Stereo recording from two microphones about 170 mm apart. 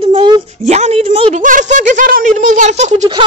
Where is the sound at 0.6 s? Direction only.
40° right (ahead or behind).